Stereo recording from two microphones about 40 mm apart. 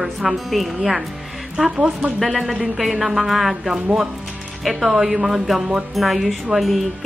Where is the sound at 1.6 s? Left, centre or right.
Right.